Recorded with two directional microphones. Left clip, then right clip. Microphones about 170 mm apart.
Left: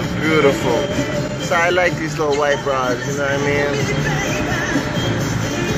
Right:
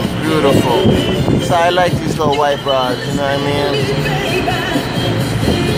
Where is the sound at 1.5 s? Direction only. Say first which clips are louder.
Right 2 dB; 20° right (ahead or behind).